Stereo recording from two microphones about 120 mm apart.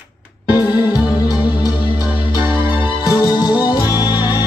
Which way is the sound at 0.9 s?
30° left (ahead or behind).